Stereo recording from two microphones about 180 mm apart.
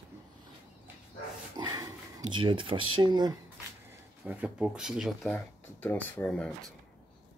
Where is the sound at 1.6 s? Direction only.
20° right (ahead or behind).